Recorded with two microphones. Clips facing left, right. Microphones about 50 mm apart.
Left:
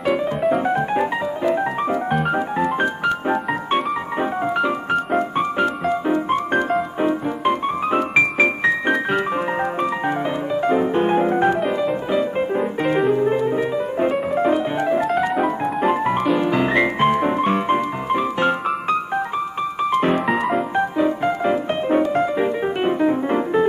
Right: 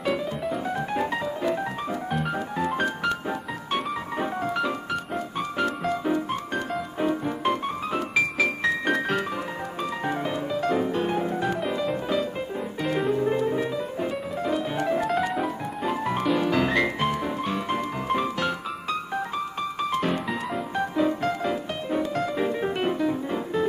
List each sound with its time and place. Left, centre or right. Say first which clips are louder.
0.7 s music: left 7 dB; left
4.2 s piano: left 6 dB; left
5.6 s music: left 2 dB; left
7.9 s music: left 7 dB; left
8.8 s keyboard: left 5 dB; centre
10.0 s music: left 6 dB; left
11.6 s music: left 6 dB; centre
12.4 s music: left 10 dB; left
13.0 s music: left 4 dB; left
13.9 s music: left 10 dB; left
15.0 s piano: left 5 dB; centre
15.8 s music: left 6 dB; left
17.0 s music: left 9 dB; left
21.8 s music: left 8 dB; left